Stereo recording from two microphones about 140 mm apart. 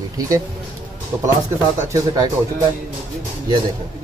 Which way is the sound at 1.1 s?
15° right (ahead or behind).